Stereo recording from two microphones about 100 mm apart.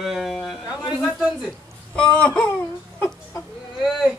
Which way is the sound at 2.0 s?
10° left (ahead or behind).